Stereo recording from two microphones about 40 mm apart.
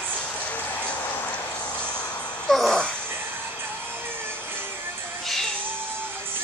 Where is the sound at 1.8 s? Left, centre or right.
Left.